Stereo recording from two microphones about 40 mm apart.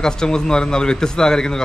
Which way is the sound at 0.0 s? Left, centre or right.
Centre.